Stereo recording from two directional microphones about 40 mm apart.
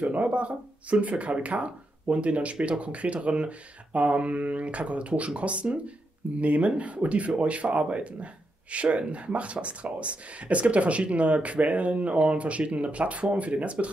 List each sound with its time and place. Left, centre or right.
0.1 s speech: right